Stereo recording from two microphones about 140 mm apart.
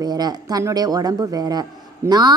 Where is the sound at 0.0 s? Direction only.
30° right (ahead or behind).